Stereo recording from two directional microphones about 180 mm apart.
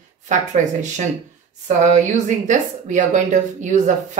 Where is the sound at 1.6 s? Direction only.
40° right (ahead or behind).